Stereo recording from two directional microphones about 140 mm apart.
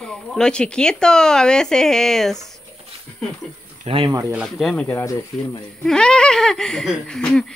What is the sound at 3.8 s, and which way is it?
Speech, 40° right (ahead or behind).